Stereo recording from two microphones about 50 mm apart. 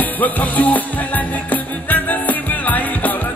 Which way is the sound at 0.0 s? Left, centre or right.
Left.